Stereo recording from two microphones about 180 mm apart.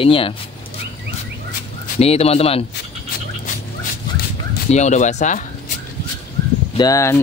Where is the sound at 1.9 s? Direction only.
35° left (ahead or behind).